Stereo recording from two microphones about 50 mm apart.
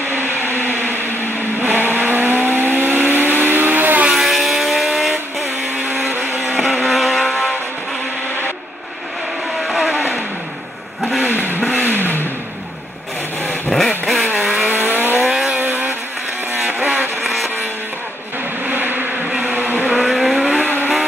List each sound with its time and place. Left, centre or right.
0.3 s a sound: right
1.6 s vehicle: right
4.1 s vehicle: centre
6.0 s vehicle: right
6.6 s vehicle: centre
9.6 s vehicle: centre
11.2 s vehicle: right
13.7 s vehicle: centre
14.7 s vehicle: right
16.6 s vehicle: right
18.7 s bee: right
19.3 s vehicle: right
20.0 s vehicle: centre